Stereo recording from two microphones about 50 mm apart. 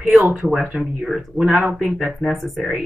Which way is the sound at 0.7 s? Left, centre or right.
Right.